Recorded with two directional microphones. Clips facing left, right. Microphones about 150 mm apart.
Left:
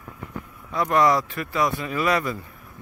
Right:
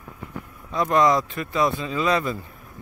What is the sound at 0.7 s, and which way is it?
Speech, 20° right (ahead or behind).